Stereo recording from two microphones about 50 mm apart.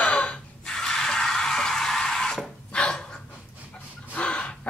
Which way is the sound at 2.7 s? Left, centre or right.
Left.